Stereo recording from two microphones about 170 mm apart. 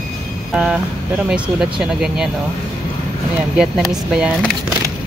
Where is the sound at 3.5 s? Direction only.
5° right (ahead or behind).